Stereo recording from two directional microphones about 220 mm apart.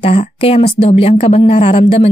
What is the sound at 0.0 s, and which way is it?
A woman's voice, 25° left (ahead or behind).